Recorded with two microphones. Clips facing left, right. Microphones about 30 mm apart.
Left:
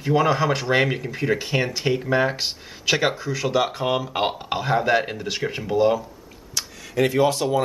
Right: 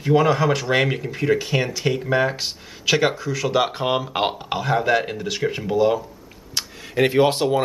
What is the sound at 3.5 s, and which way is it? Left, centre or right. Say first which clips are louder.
Speech: right 1 dB; right.